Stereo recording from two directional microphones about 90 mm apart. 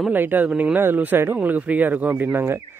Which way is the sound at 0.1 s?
20° right (ahead or behind).